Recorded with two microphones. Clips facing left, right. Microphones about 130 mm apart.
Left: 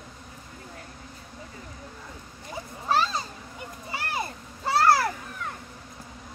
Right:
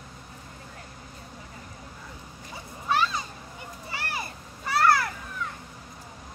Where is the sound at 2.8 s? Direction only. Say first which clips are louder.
Left 1 dB; 35° left (ahead or behind).